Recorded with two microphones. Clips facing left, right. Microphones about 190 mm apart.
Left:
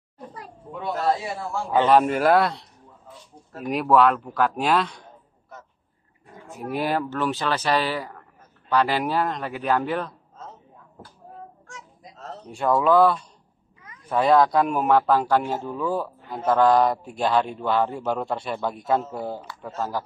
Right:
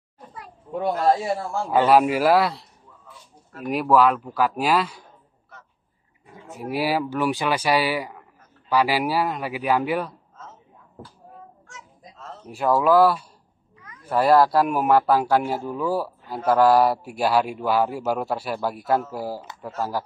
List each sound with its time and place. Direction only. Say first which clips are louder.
1.7 s speech: right 1 dB; 5° right (ahead or behind)
3.6 s speech: even; centre (ahead or behind)
6.2 s speech: right 1 dB; 5° right (ahead or behind)
11.6 s a sound: left 2 dB; 40° left (ahead or behind)
12.4 s speech: right 1 dB; 5° right (ahead or behind)